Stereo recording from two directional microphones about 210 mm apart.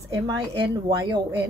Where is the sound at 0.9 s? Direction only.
20° right (ahead or behind).